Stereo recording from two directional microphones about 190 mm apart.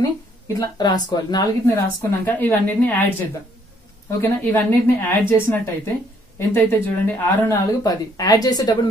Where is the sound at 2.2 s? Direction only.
10° left (ahead or behind).